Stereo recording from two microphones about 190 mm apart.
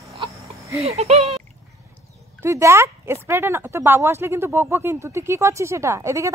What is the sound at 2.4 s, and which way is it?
Speech, 15° right (ahead or behind).